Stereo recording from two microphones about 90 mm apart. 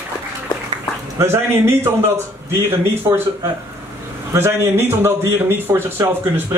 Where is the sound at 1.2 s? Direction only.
30° right (ahead or behind).